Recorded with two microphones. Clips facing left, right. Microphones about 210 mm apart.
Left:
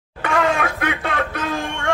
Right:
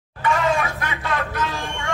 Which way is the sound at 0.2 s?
55° left (ahead or behind).